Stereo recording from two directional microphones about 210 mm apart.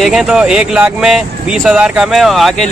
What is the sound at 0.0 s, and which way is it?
Speech, centre (ahead or behind).